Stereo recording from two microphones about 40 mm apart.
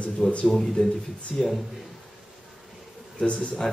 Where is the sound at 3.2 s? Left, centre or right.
Left.